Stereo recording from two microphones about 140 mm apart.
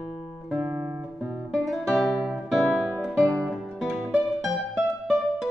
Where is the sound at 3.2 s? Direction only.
20° right (ahead or behind).